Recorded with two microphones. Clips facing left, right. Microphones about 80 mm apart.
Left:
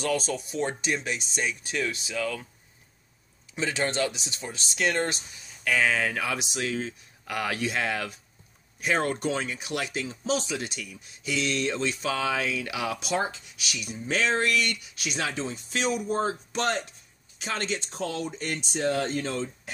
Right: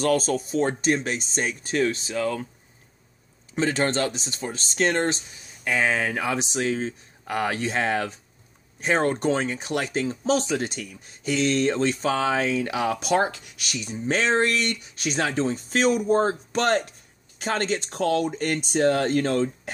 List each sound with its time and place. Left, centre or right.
0.0 s speech: right
3.5 s speech: right
13.1 s speech: right
13.7 s speech: right
17.8 s speech: right